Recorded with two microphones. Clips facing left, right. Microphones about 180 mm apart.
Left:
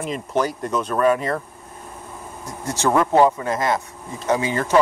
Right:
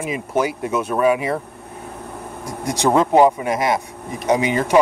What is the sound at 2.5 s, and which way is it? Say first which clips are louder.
Speech: right 3 dB; 15° right (ahead or behind).